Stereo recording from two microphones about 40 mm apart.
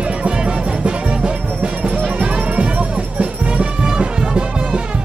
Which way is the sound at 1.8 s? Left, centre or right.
Right.